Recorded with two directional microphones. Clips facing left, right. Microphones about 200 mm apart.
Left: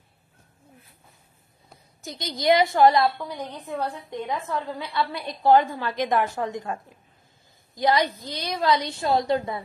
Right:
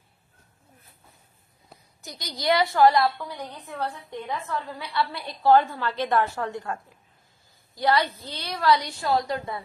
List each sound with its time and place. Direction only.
2.0 s a woman's voice: 25° left (ahead or behind)